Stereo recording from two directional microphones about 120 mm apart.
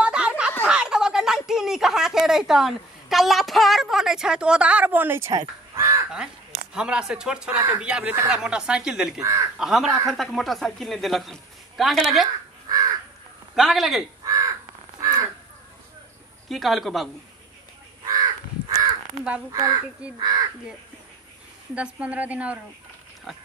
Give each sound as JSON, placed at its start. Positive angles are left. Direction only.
{"t": 0.0, "sound": "a sound", "side_deg": -10}
{"t": 5.8, "sound": "crow", "side_deg": -25}
{"t": 6.7, "sound": "speech", "side_deg": -5}
{"t": 9.2, "sound": "speech", "side_deg": -25}
{"t": 9.6, "sound": "a woman's voice", "side_deg": -5}
{"t": 12.6, "sound": "crow", "side_deg": -30}
{"t": 13.6, "sound": "a woman's voice", "side_deg": 0}
{"t": 14.2, "sound": "crow", "side_deg": -30}
{"t": 16.4, "sound": "a woman's voice", "side_deg": 0}
{"t": 18.0, "sound": "crow", "side_deg": -30}
{"t": 19.5, "sound": "speech", "side_deg": -30}
{"t": 21.7, "sound": "speech", "side_deg": -10}